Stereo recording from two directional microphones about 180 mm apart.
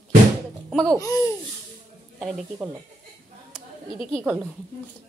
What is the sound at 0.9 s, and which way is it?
Speech, 15° left (ahead or behind).